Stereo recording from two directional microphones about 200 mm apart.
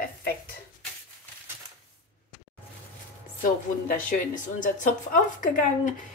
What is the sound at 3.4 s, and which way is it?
A woman's voice, 40° left (ahead or behind).